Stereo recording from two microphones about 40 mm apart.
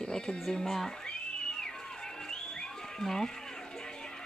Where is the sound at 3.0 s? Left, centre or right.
Centre.